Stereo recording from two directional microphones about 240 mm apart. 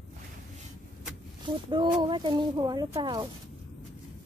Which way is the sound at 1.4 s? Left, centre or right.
Centre.